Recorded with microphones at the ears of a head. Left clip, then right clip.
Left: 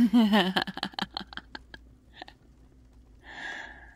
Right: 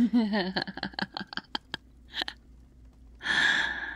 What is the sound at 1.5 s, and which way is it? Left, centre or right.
Chewing, right.